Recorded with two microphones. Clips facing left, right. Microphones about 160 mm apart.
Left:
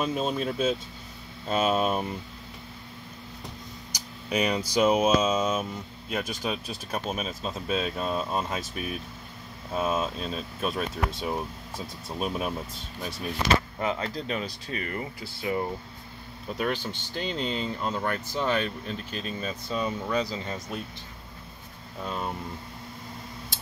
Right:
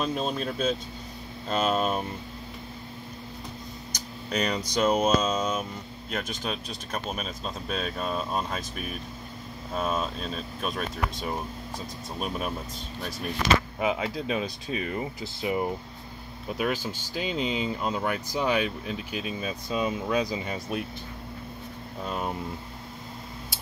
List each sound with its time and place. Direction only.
0.0 s speech: 5° left (ahead or behind)
3.9 s speech: 10° left (ahead or behind)
13.7 s speech: 10° right (ahead or behind)
16.5 s speech: 5° right (ahead or behind)
22.0 s speech: 5° right (ahead or behind)